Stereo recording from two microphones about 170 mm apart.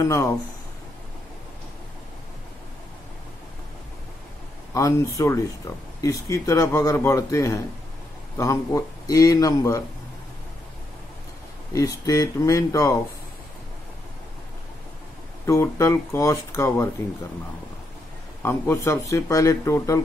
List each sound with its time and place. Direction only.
0.1 s speech: 20° left (ahead or behind)
4.7 s a man's voice: 20° left (ahead or behind)
11.7 s a man's voice: 20° left (ahead or behind)
15.4 s speech: 15° left (ahead or behind)
18.4 s speech: 15° left (ahead or behind)